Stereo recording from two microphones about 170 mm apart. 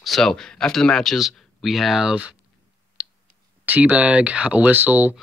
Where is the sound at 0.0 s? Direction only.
Centre (ahead or behind).